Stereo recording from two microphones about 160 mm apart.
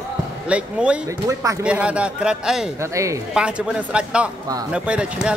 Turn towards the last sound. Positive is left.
turn(degrees=-5)  # may be behind; listen again after turning